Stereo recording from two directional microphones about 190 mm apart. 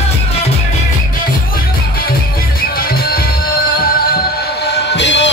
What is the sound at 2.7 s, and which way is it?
Music, 50° left (ahead or behind).